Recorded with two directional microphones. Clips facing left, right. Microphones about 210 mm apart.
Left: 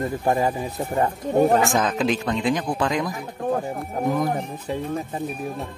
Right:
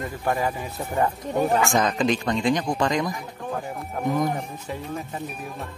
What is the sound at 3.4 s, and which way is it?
Speech, 35° left (ahead or behind).